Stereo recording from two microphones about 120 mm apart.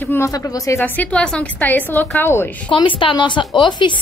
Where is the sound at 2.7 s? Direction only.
45° left (ahead or behind).